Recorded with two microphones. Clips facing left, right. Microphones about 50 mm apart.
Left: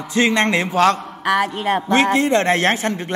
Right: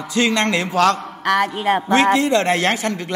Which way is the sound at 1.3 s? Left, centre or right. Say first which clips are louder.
Right 1 dB; centre.